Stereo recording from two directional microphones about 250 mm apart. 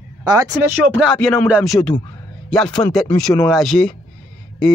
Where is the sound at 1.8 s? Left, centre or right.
Centre.